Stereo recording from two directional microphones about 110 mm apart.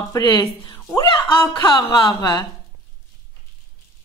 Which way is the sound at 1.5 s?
45° left (ahead or behind).